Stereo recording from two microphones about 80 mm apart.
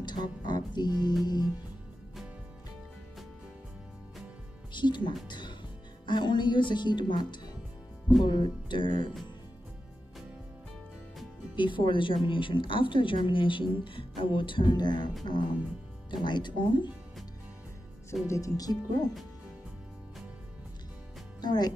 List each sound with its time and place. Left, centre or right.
0.0 s speech: left
1.2 s music: left
4.7 s speech: left
5.3 s music: left
6.0 s a woman's voice: left
11.5 s a woman's voice: left
18.2 s speech: left
21.4 s speech: left